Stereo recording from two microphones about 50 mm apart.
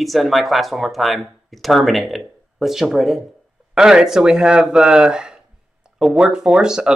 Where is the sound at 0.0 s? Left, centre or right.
Centre.